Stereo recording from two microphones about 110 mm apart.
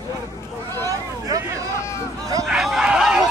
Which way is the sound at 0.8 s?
30° right (ahead or behind).